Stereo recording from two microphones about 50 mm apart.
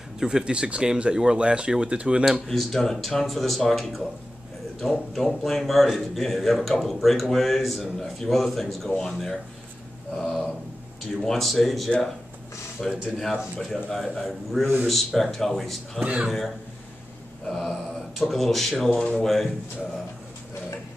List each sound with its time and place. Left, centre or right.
0.2 s speech: centre
2.4 s a man's voice: centre
5.1 s a man's voice: centre
10.1 s a sound: centre
11.2 s a man's voice: centre
16.0 s speech: right
16.3 s a man's voice: centre